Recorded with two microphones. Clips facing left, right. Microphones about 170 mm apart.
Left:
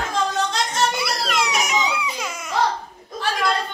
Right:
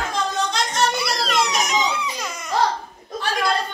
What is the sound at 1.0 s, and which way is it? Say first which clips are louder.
Baby cry: right 1 dB; 5° left (ahead or behind).